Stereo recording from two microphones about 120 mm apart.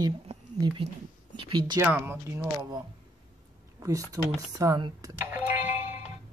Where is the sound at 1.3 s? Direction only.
45° right (ahead or behind).